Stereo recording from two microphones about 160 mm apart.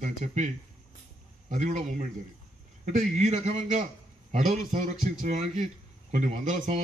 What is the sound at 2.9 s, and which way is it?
Speech, 45° right (ahead or behind).